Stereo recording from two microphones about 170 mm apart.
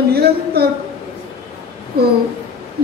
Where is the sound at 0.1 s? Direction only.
70° right (ahead or behind).